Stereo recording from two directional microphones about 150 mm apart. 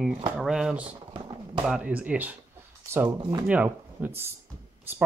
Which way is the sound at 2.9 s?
20° right (ahead or behind).